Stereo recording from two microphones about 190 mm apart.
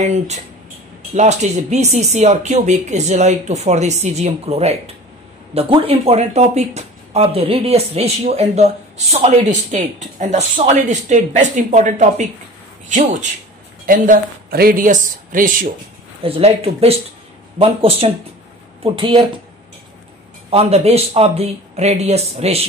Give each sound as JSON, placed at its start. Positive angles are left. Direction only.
{"t": 1.1, "sound": "speech", "side_deg": -35}
{"t": 16.2, "sound": "speech", "side_deg": -30}
{"t": 20.4, "sound": "speech", "side_deg": -30}